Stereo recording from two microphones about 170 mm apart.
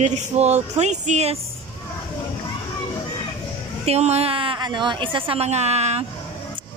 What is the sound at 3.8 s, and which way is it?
Speech, 40° right (ahead or behind).